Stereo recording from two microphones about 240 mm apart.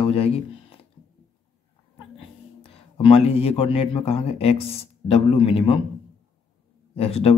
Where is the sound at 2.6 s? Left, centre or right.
Left.